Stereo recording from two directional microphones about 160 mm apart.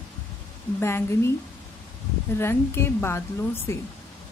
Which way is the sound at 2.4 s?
15° left (ahead or behind).